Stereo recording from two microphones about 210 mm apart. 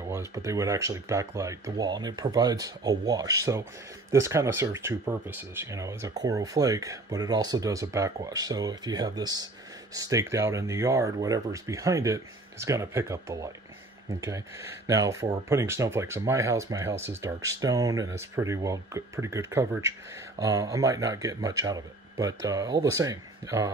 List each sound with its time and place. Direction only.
0.1 s speech: 15° right (ahead or behind)
14.9 s speech: 15° right (ahead or behind)